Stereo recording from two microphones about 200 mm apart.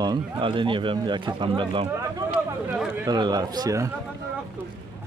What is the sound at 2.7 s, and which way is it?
Chatter, 10° right (ahead or behind).